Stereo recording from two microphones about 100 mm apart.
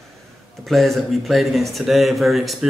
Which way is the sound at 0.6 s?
Centre (ahead or behind).